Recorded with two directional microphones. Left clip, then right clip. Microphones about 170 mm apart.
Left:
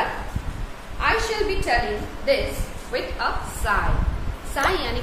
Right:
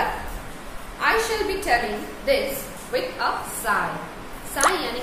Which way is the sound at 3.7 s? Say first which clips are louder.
Even; 15° left (ahead or behind).